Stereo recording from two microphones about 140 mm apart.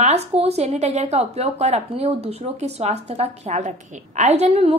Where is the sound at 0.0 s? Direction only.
50° right (ahead or behind).